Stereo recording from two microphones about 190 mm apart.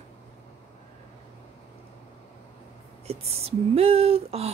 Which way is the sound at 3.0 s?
30° right (ahead or behind).